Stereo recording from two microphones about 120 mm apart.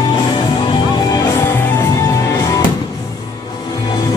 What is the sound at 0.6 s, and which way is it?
Music, 35° left (ahead or behind).